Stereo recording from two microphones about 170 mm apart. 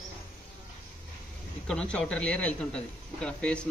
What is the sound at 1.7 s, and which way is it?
A man's voice, 5° left (ahead or behind).